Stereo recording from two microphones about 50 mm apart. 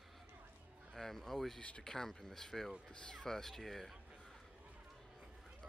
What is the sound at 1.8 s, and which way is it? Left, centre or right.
Speech, centre.